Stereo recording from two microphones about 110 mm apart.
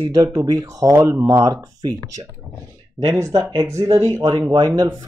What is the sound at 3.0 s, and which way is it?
Speech, 40° right (ahead or behind).